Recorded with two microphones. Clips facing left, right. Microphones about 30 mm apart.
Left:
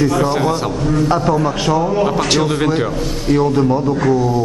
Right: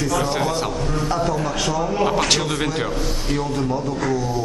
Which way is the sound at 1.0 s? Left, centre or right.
Left.